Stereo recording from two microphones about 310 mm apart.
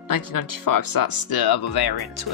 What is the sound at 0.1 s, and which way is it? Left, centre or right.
Speech, left.